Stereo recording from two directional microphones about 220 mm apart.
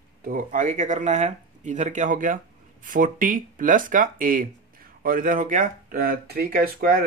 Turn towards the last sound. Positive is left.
turn(degrees=-40)  # may be behind; listen again after turning